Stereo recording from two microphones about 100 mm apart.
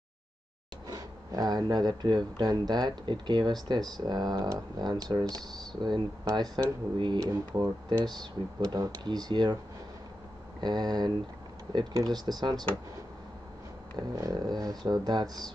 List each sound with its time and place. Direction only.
0.8 s speech: 40° right (ahead or behind)
10.6 s speech: 45° right (ahead or behind)
13.9 s speech: 40° right (ahead or behind)